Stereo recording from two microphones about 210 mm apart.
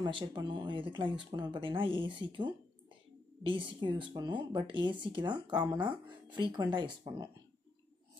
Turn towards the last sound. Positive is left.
turn(degrees=-20)  # may be behind; listen again after turning